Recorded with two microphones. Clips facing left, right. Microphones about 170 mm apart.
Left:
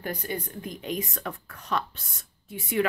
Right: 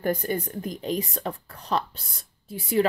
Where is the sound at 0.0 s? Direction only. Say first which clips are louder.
Right 7 dB; 45° right (ahead or behind).